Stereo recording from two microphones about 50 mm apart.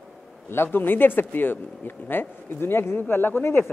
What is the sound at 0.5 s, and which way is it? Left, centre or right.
A man's voice, left.